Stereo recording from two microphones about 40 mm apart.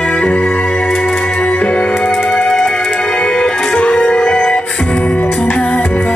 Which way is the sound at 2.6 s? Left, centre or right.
Left.